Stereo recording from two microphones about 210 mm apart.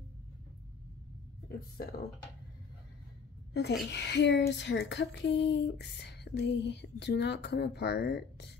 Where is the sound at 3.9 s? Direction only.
55° left (ahead or behind).